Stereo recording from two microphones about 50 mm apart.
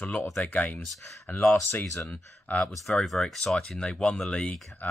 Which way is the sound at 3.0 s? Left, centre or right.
Centre.